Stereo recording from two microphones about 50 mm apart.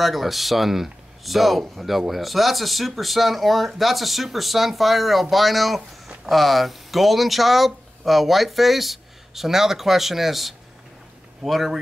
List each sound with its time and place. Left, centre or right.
0.0 s speech: centre